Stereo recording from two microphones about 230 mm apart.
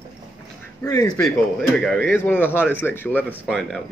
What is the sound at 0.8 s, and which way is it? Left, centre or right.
A man's voice, centre.